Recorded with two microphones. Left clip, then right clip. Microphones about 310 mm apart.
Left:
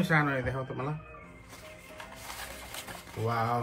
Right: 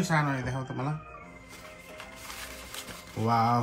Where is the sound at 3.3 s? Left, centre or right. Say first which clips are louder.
Right 5 dB; right.